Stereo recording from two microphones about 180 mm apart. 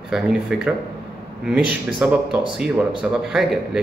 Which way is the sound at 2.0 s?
5° right (ahead or behind).